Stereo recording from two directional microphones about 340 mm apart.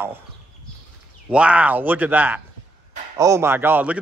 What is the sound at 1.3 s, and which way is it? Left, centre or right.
Speech, centre.